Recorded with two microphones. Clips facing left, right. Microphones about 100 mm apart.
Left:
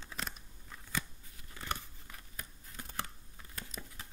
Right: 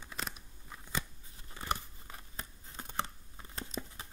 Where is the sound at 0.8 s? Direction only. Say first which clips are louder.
Even; 20° right (ahead or behind).